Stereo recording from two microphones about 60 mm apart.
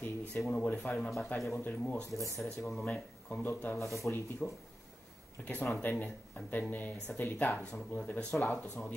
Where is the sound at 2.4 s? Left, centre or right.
Centre.